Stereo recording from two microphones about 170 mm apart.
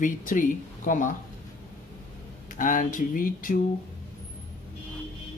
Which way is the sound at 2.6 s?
50° left (ahead or behind).